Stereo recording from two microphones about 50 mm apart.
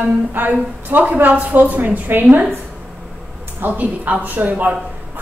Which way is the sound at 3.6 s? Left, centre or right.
Right.